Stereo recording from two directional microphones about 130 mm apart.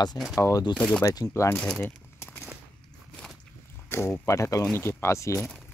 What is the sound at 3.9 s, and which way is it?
Speech, 20° left (ahead or behind).